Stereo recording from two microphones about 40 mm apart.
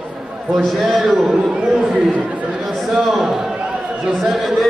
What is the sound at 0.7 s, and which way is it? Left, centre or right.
A man's voice, centre.